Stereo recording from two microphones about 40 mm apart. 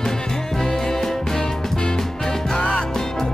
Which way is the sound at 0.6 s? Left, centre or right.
Centre.